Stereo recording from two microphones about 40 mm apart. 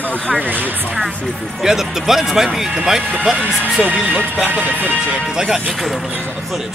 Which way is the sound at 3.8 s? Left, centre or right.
Right.